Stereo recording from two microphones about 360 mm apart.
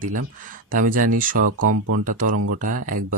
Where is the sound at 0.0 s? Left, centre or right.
Right.